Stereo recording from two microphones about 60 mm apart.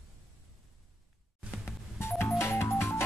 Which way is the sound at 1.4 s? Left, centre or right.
Left.